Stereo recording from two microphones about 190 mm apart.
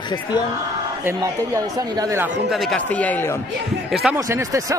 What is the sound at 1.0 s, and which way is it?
Speech, 15° right (ahead or behind).